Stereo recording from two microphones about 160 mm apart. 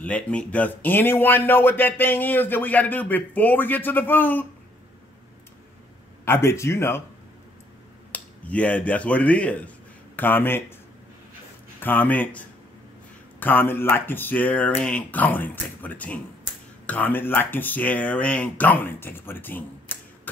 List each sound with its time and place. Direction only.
0.0 s speech: 5° left (ahead or behind)
6.2 s speech: 15° left (ahead or behind)
8.1 s a man's voice: 10° left (ahead or behind)
11.8 s speech: 10° left (ahead or behind)